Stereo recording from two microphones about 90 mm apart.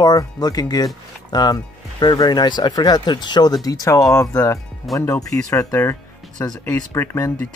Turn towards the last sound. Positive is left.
turn(degrees=25)  # may be behind; listen again after turning